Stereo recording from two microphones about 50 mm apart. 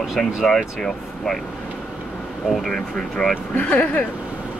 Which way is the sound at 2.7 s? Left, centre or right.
Centre.